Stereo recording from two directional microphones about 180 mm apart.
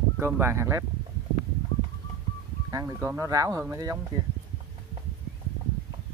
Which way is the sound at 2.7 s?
15° right (ahead or behind).